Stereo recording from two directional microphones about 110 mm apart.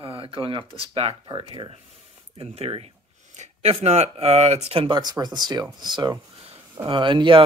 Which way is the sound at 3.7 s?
80° right.